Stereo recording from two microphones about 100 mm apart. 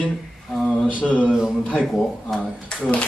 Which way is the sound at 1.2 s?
5° right (ahead or behind).